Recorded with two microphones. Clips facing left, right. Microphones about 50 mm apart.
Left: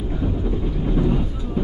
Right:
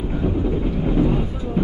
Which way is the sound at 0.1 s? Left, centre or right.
Right.